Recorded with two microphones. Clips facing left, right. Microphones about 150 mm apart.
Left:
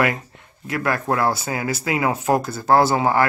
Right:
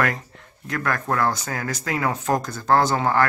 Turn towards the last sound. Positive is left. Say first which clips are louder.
# left 2 dB
turn(degrees=10)  # may be behind; listen again after turning